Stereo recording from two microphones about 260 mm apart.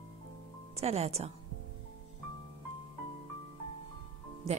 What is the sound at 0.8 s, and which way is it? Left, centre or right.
Speech, right.